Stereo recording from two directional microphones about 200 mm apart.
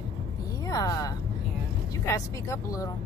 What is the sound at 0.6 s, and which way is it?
Speech, 15° left (ahead or behind).